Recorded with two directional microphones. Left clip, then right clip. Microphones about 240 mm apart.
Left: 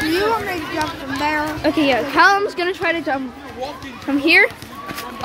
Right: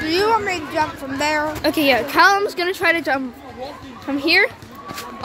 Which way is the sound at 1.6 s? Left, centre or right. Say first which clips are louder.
Even; centre.